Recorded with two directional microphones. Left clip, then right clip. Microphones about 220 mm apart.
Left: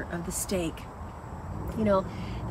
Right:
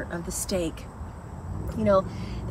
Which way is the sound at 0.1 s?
10° right (ahead or behind).